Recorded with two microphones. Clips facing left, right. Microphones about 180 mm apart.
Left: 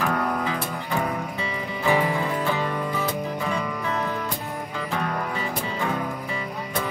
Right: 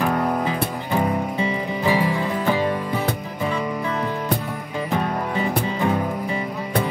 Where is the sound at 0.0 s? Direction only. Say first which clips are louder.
Right 4 dB; 25° right (ahead or behind).